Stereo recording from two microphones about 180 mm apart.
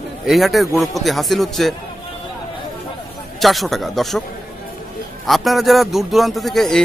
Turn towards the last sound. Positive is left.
turn(degrees=0)  # may be behind; listen again after turning